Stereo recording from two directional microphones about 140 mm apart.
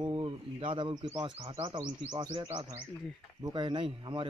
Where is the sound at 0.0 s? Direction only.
35° right (ahead or behind).